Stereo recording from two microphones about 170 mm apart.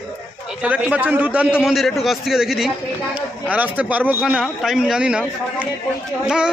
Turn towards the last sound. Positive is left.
turn(degrees=-5)  # may be behind; listen again after turning